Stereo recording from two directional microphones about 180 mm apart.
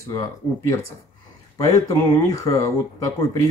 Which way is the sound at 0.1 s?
20° left (ahead or behind).